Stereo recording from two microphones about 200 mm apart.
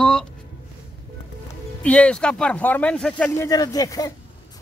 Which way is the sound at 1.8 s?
5° left (ahead or behind).